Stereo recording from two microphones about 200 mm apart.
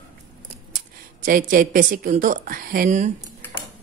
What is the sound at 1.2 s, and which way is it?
Speech, 45° right (ahead or behind).